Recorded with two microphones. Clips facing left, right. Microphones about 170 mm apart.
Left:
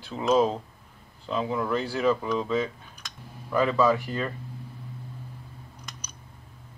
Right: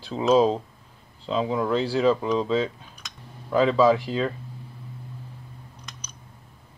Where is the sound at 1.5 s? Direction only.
15° right (ahead or behind).